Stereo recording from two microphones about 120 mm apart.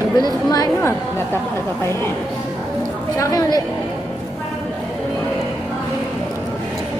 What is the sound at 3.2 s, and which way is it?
Speech, 30° left (ahead or behind).